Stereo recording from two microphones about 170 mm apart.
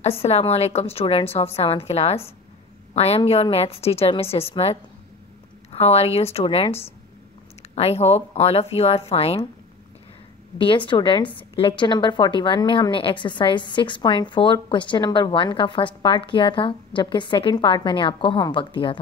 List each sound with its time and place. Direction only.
0.0 s a woman's voice: 35° left (ahead or behind)
10.6 s a woman's voice: 30° left (ahead or behind)